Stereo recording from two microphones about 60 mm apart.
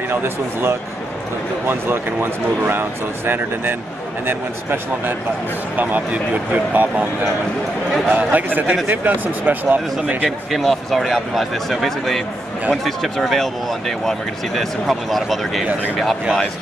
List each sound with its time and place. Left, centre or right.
0.1 s speech: right
2.6 s speech: right
8.1 s speech: right
10.5 s speech: centre